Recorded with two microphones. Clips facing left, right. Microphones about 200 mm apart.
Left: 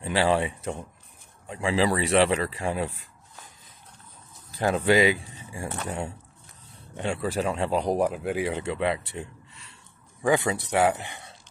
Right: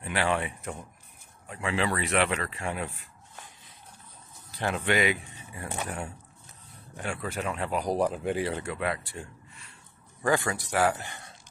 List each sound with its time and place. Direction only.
0.0 s speech: 30° left (ahead or behind)
4.6 s speech: 30° left (ahead or behind)
8.0 s speech: 5° left (ahead or behind)